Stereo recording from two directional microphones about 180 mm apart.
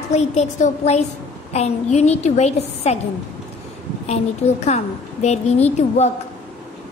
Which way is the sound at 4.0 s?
35° left (ahead or behind).